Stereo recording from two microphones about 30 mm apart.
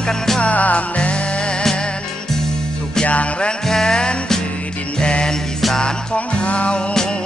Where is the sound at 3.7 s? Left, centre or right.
Centre.